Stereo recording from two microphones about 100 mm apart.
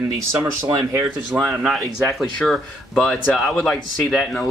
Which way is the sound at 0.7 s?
25° right (ahead or behind).